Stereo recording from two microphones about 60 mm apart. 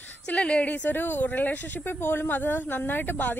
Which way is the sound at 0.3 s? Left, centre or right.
Left.